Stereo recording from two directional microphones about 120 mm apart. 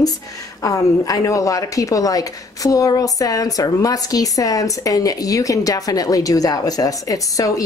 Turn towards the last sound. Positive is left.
turn(degrees=30)  # may be behind; listen again after turning